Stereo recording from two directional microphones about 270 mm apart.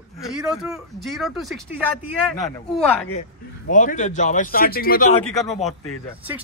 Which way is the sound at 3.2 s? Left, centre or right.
Left.